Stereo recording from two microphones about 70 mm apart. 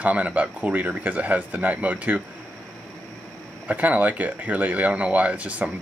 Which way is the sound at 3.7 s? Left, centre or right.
Right.